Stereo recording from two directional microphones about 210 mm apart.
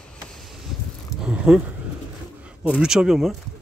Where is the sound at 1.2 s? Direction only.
5° right (ahead or behind).